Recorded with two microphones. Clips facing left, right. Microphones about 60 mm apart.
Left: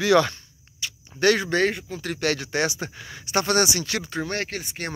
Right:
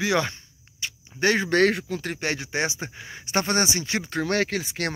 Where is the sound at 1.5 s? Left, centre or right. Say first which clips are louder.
Right 2 dB; right.